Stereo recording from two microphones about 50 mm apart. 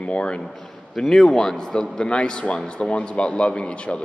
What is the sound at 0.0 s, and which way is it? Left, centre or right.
Speech, left.